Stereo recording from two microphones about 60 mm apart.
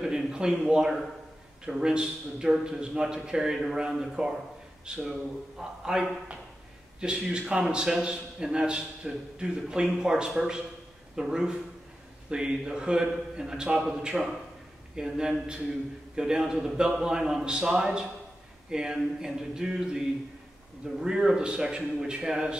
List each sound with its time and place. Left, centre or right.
0.0 s a man's voice: centre